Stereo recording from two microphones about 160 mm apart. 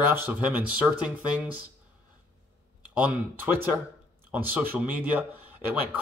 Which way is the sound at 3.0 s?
10° right (ahead or behind).